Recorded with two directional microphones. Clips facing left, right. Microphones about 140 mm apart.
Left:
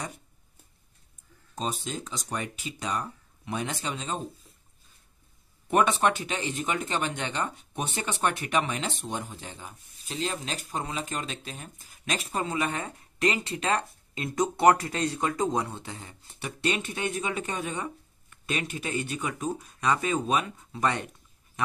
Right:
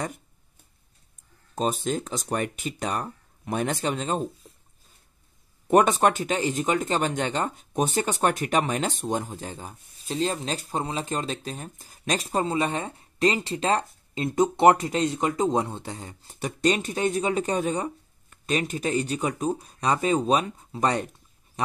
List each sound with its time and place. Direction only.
1.5 s speech: 50° right (ahead or behind)
5.7 s speech: 40° right (ahead or behind)